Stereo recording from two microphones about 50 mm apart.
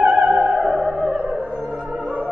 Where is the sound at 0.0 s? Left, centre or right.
Right.